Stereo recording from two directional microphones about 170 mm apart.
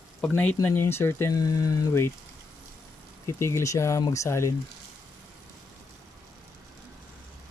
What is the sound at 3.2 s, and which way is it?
Speech, 20° left (ahead or behind).